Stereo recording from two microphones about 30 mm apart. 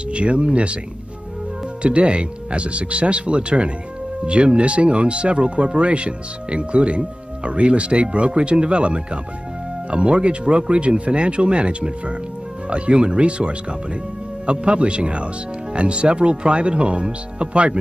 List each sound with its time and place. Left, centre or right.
0.1 s speech: right
1.8 s speech: right